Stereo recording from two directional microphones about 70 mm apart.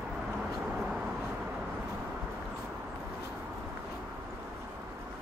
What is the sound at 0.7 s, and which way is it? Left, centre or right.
Vehicle, centre.